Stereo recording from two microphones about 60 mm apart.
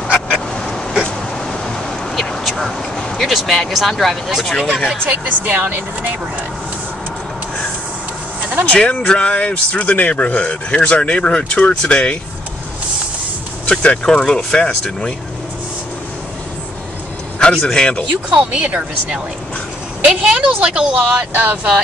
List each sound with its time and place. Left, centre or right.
0.5 s a sound: centre
3.0 s speech: centre
5.1 s a woman's voice: right
8.6 s speech: left
13.7 s speech: centre
17.4 s speech: centre
18.3 s a woman's voice: right
21.1 s speech: right